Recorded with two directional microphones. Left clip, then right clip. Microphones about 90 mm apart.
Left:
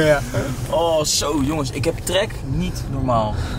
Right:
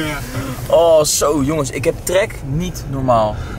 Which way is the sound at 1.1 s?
25° right (ahead or behind).